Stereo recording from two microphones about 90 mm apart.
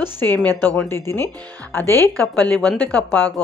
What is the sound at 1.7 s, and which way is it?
Speech, 25° left (ahead or behind).